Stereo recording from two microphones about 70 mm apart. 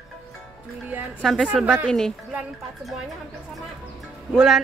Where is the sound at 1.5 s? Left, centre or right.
Centre.